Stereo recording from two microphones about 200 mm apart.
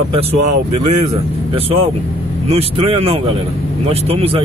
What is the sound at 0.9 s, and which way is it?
A man's voice, 30° right (ahead or behind).